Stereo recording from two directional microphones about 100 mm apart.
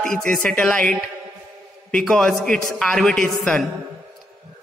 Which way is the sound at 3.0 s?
5° left (ahead or behind).